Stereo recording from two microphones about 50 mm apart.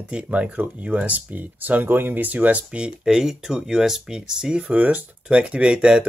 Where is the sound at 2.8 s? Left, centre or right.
Centre.